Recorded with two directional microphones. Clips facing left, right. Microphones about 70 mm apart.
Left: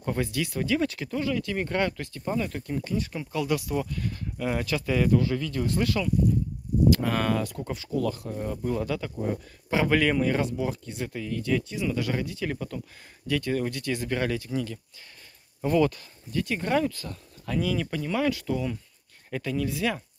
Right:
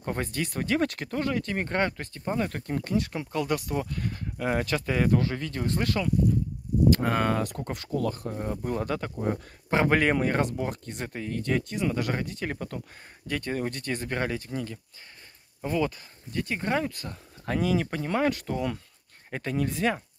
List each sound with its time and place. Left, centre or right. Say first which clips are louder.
0.0 s speech: left 2 dB; right
7.4 s speech: even; right
8.0 s speech: left 1 dB; right
15.6 s speech: left 5 dB; centre
16.3 s speech: left 2 dB; right
17.5 s speech: right 1 dB; right
19.3 s speech: even; right